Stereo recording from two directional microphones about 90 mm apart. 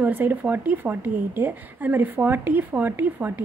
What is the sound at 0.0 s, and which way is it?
A woman's voice, 20° right (ahead or behind).